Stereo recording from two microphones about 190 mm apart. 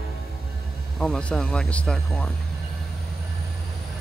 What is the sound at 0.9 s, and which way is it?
Speech, 5° left (ahead or behind).